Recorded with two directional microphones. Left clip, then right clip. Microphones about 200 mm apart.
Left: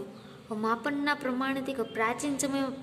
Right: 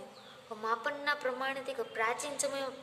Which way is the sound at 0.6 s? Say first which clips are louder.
Left 4 dB; 15° left (ahead or behind).